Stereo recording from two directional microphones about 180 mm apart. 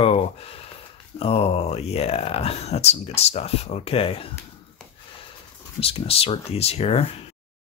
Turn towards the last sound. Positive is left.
turn(degrees=35)  # may be behind; listen again after turning